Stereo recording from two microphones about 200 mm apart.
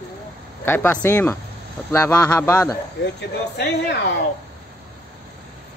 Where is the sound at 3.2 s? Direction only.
55° left (ahead or behind).